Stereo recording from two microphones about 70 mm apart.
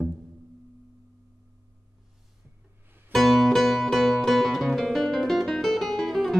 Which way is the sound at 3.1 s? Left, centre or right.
Centre.